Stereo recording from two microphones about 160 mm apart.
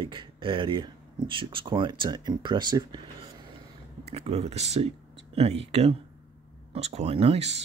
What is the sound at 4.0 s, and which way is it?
Speech, 40° right (ahead or behind).